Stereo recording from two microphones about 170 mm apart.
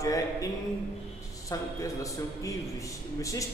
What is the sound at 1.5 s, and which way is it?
A man's voice, 20° left (ahead or behind).